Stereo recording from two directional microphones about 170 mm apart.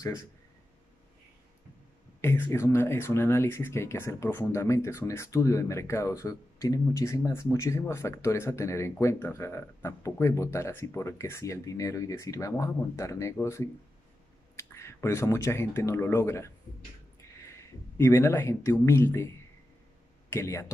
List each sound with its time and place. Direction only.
2.2 s speech: 15° left (ahead or behind)
17.9 s speech: 15° left (ahead or behind)
20.2 s speech: 15° left (ahead or behind)